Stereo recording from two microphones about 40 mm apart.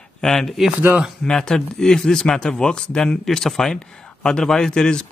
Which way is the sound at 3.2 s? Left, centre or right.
Centre.